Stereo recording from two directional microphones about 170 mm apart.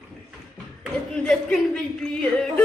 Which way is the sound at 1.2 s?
5° left (ahead or behind).